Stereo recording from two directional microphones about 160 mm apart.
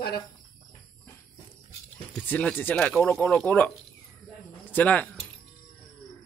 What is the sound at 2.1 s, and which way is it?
Speech, 10° left (ahead or behind).